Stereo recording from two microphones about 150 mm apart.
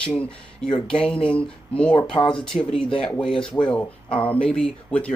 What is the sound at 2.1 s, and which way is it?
Speech, 35° left (ahead or behind).